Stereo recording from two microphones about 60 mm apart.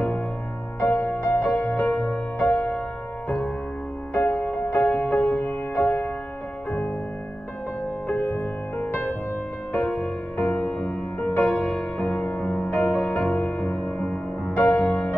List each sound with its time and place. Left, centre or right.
0.7 s music: left
4.1 s music: left
8.1 s music: left; by 12.6 s centre
12.6 s music: left
13.3 s music: centre